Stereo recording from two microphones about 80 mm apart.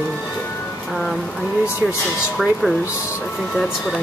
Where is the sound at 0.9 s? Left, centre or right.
Centre.